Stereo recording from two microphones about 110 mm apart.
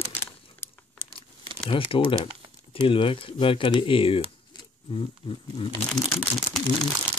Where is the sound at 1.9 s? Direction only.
50° left (ahead or behind).